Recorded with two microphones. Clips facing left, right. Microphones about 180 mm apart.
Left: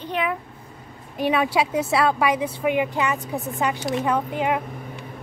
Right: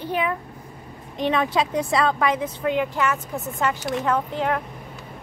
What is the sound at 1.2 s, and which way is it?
Speech, 10° left (ahead or behind).